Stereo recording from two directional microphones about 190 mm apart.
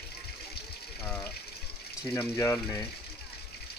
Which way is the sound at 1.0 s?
10° left (ahead or behind).